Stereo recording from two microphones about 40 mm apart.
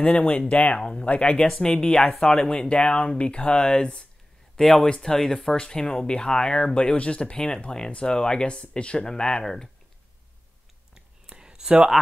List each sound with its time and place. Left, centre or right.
0.0 s speech: left
1.4 s speech: centre
2.5 s speech: left
4.6 s speech: centre
4.8 s speech: centre
11.2 s a sound: centre